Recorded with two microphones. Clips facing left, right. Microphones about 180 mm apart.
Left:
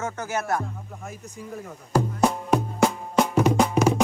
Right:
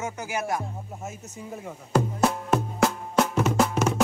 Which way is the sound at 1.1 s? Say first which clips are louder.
Left 2 dB; 35° left (ahead or behind).